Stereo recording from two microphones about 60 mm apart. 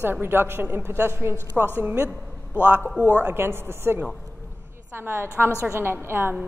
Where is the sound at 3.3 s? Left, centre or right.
Right.